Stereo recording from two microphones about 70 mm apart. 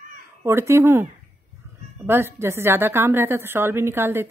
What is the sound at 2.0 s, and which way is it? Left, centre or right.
A woman's voice, right.